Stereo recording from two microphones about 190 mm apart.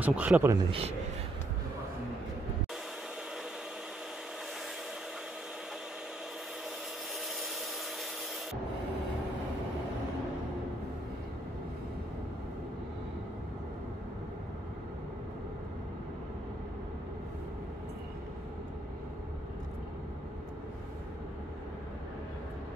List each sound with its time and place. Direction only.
0.0 s speech: 5° right (ahead or behind)
0.7 s a man's voice: 30° right (ahead or behind)